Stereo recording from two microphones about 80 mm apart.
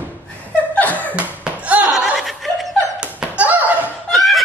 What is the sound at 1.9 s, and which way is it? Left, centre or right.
Snicker, centre.